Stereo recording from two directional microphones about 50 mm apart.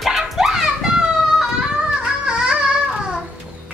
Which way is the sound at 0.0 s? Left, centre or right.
Centre.